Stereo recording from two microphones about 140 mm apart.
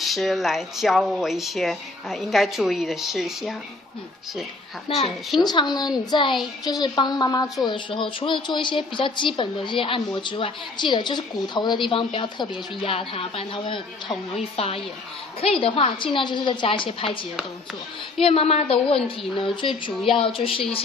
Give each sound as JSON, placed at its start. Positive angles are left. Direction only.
{"t": 0.0, "sound": "speech", "side_deg": 0}
{"t": 4.8, "sound": "speech", "side_deg": 40}
{"t": 5.4, "sound": "a woman's voice", "side_deg": 30}